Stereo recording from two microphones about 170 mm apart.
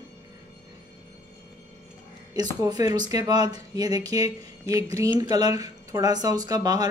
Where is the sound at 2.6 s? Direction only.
20° right (ahead or behind).